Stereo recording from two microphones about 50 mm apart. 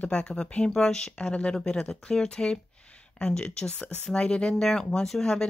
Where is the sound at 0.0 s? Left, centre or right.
Left.